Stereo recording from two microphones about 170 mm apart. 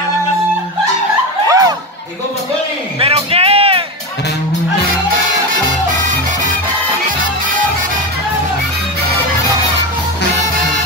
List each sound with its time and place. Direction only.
1.5 s music: 20° right (ahead or behind)
3.0 s music: 35° right (ahead or behind)